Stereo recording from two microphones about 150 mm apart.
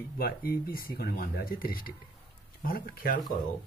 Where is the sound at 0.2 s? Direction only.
85° left.